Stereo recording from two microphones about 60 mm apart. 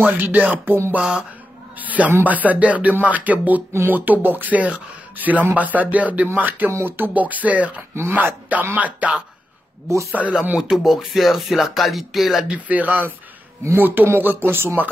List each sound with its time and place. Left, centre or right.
0.0 s speech: right
0.9 s speech: centre
1.8 s speech: right
10.2 s speech: right
10.6 s speech: centre
12.5 s speech: right